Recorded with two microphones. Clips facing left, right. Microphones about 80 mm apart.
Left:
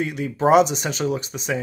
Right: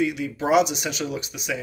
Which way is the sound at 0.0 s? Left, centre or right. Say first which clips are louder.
Left 3 dB; left.